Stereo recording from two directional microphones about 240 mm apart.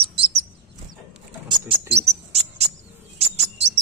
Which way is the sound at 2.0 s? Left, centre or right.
Right.